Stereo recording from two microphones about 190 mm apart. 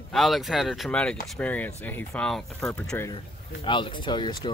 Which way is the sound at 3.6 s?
25° left (ahead or behind).